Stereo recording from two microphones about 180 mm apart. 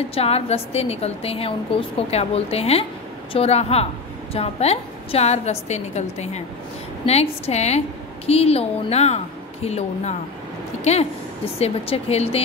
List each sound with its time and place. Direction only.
0.1 s a woman's voice: 35° left (ahead or behind)